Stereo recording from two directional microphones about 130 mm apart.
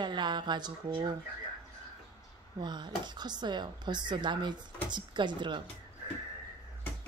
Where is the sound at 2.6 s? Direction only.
35° right (ahead or behind).